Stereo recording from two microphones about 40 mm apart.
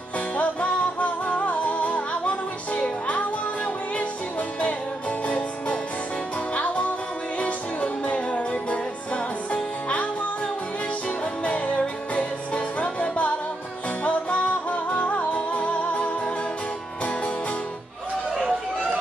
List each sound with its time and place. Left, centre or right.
0.4 s music: left
5.2 s music: left
11.4 s music: left
18.3 s chatter: centre